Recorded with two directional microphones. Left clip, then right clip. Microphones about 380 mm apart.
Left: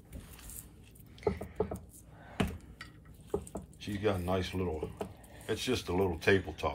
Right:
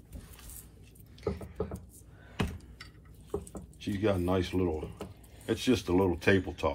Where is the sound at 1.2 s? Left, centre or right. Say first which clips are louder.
Left 2 dB; left.